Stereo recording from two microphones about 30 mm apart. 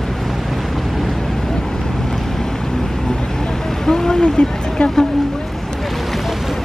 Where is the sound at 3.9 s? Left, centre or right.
Left.